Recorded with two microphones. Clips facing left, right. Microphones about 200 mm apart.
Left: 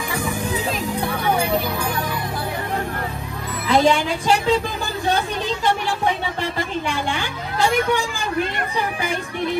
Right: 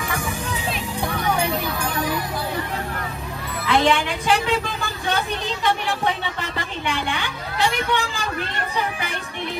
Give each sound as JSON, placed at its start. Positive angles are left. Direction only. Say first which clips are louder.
{"t": 3.6, "sound": "a woman's voice", "louder": "left 2 dB", "side_deg": 35}